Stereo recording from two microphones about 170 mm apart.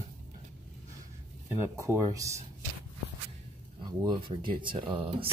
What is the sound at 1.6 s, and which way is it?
Speech, 15° right (ahead or behind).